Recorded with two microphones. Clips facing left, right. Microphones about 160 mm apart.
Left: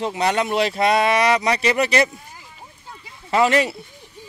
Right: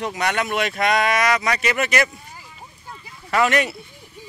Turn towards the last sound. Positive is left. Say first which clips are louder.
# left 2 dB
turn(degrees=30)  # may be behind; listen again after turning